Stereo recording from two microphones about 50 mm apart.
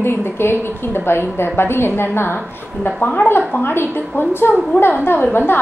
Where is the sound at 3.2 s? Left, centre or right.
Left.